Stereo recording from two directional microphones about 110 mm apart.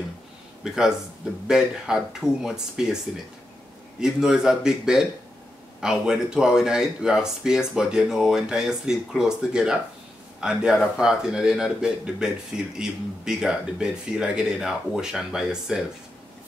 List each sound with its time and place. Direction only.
0.7 s speech: 5° right (ahead or behind)
4.0 s speech: 5° right (ahead or behind)